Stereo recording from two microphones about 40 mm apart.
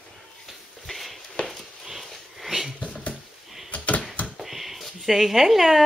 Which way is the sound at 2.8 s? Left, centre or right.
Left.